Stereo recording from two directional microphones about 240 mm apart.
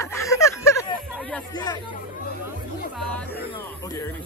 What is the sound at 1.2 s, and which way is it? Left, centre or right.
Chatter, centre.